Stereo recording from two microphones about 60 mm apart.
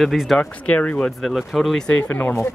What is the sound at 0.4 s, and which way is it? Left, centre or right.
Speech, left.